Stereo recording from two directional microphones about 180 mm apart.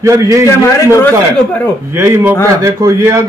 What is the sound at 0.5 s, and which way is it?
Speech, 10° left (ahead or behind).